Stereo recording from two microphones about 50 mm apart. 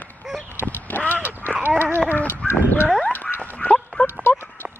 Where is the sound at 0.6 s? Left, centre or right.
Left.